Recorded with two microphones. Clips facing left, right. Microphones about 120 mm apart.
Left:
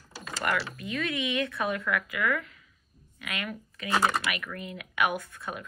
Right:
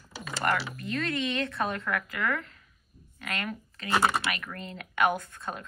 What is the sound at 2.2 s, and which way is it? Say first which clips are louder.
Speech: left 1 dB; 20° right (ahead or behind).